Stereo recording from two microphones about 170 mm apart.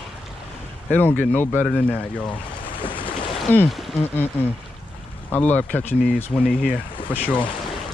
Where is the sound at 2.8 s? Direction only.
30° left (ahead or behind).